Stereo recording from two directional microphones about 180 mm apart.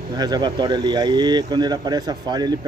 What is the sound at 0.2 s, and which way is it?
Speech, 25° right (ahead or behind).